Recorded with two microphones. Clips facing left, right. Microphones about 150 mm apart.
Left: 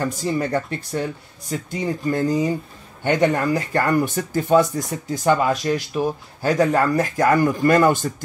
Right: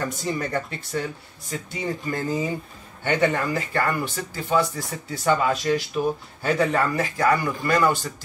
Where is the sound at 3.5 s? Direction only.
45° left (ahead or behind).